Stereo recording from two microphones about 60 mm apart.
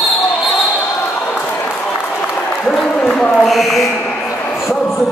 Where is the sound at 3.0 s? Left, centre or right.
Centre.